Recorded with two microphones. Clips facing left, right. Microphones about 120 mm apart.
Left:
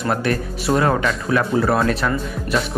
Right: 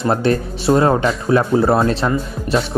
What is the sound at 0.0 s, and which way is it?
Speech, 30° right (ahead or behind).